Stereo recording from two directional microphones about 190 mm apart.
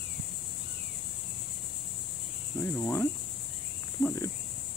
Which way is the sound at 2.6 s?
10° left (ahead or behind).